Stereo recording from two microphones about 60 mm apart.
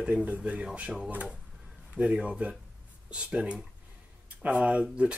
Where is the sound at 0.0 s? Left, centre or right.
Right.